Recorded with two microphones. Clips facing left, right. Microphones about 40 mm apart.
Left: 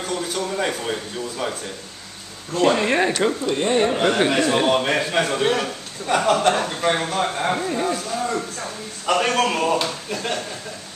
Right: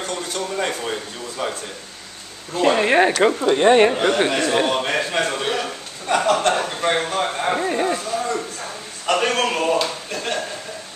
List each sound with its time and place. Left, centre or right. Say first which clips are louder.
0.0 s a sound: left 1 dB; centre
1.4 s a man's voice: right 2 dB; centre
2.5 s speech: right 2 dB; centre
3.4 s speech: right 9 dB; right
3.9 s a man's voice: even; centre
7.5 s speech: right 2 dB; right
7.9 s a man's voice: right 1 dB; centre